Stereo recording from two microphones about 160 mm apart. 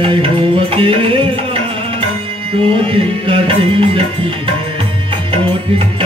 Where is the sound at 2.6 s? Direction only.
35° right (ahead or behind).